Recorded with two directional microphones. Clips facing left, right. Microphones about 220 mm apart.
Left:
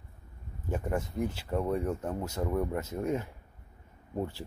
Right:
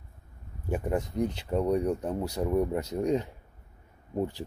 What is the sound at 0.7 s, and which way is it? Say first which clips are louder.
Speech: right 3 dB; 15° right (ahead or behind).